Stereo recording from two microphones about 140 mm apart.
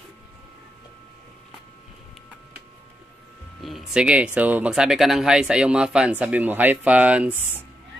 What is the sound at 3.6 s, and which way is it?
Speech, 5° right (ahead or behind).